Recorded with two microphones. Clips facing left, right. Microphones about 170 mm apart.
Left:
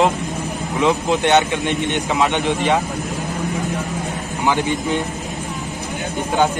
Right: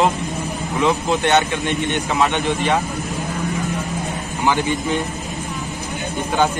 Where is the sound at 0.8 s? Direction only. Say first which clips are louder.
Left 1 dB; 15° left (ahead or behind).